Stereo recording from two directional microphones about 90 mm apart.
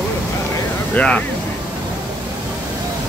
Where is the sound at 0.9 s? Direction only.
15° left (ahead or behind).